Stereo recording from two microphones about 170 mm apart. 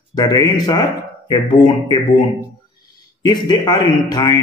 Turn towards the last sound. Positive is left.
turn(degrees=20)  # may be behind; listen again after turning